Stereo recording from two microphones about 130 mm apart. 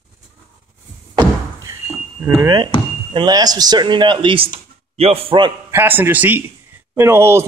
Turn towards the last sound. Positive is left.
turn(degrees=-20)  # may be behind; listen again after turning